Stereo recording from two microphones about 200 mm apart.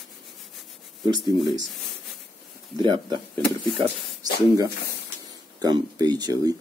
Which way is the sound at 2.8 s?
20° right (ahead or behind).